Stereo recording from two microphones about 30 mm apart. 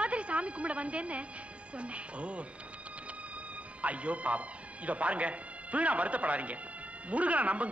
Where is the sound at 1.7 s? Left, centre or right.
Right.